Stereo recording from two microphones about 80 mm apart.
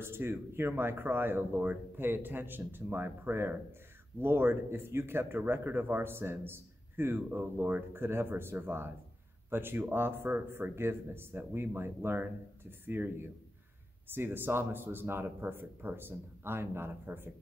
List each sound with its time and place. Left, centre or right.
0.0 s speech: right